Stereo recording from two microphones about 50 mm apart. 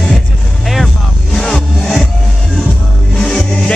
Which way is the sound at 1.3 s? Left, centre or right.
Centre.